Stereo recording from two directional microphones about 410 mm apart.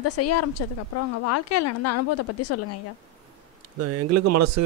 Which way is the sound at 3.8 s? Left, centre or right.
Right.